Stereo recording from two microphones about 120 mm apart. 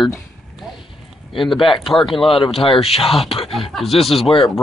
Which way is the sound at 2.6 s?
50° left (ahead or behind).